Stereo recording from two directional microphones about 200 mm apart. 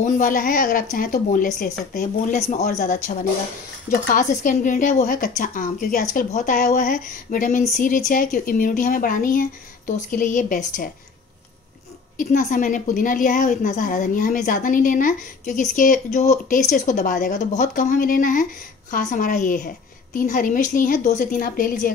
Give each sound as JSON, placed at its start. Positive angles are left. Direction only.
{"t": 0.0, "sound": "a woman's voice", "side_deg": 40}
{"t": 12.2, "sound": "a woman's voice", "side_deg": 40}